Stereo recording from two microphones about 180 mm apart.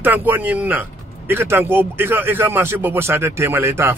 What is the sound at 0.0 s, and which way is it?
Speech, 10° right (ahead or behind).